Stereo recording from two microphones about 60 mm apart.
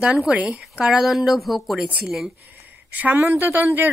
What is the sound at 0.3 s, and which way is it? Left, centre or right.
Speech, centre.